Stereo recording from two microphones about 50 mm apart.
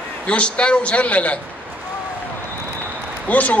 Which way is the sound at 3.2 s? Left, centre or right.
Left.